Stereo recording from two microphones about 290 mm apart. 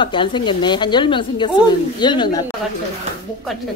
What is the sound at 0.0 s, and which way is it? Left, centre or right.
Speech, centre.